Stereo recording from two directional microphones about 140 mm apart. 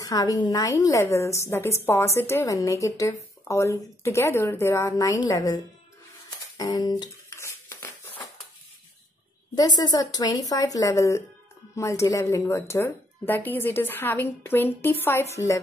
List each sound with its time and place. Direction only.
0.0 s a woman's voice: 25° left (ahead or behind)
6.5 s music: 25° left (ahead or behind)
9.6 s a woman's voice: 30° left (ahead or behind)